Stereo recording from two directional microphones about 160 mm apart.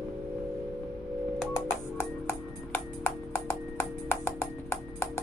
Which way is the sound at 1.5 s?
15° left (ahead or behind).